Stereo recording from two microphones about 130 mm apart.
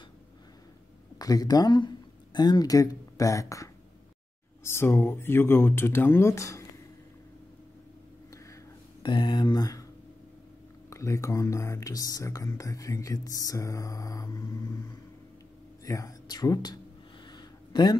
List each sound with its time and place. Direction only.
1.1 s speech: 30° left (ahead or behind)
9.0 s speech: 35° left (ahead or behind)
10.9 s speech: 25° left (ahead or behind)
17.3 s a sound: 35° left (ahead or behind)